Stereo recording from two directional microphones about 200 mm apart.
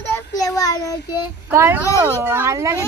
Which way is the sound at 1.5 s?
15° right (ahead or behind).